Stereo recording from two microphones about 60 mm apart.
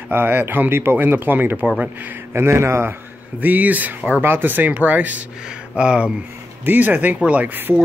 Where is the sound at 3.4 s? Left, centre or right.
Right.